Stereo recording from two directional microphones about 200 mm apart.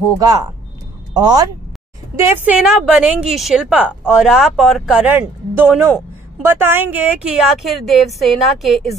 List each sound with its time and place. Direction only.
0.2 s speech: 15° right (ahead or behind)
2.1 s a woman's voice: 10° right (ahead or behind)